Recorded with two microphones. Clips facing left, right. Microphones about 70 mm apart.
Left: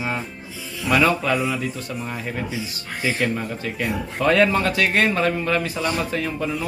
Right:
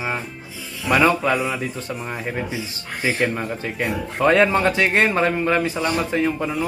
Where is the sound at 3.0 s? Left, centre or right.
Right.